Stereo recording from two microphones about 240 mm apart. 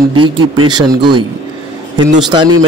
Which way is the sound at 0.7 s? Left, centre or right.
Centre.